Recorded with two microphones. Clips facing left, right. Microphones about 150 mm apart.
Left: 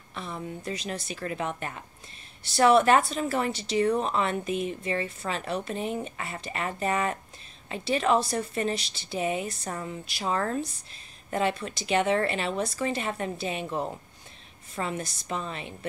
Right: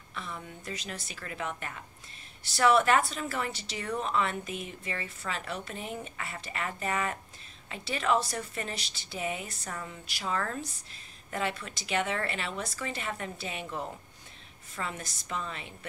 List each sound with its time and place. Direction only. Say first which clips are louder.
0.1 s speech: left 5 dB; 30° left (ahead or behind)